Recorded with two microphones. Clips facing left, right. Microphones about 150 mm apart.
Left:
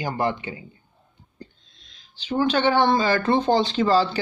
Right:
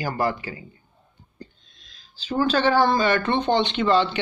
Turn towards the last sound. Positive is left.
turn(degrees=35)  # may be behind; listen again after turning